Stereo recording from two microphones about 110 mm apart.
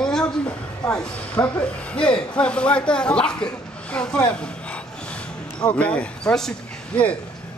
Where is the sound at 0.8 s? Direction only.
5° left (ahead or behind).